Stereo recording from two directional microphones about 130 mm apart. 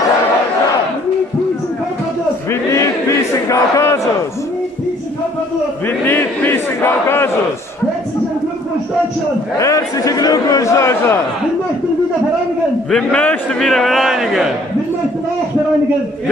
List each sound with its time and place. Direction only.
2.7 s crowd: 25° left (ahead or behind)
6.0 s crowd: 15° left (ahead or behind)
9.6 s a man's voice: 25° left (ahead or behind)
12.9 s a man's voice: 10° left (ahead or behind)